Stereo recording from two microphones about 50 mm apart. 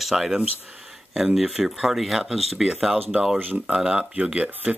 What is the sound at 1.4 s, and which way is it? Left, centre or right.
Speech, centre.